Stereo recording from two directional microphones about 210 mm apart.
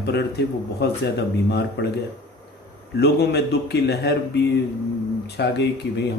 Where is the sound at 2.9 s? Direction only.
50° left (ahead or behind).